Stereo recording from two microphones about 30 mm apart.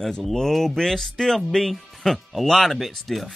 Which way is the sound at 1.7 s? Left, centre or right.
Centre.